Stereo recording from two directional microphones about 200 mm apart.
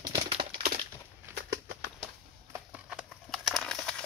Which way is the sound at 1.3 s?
50° right (ahead or behind).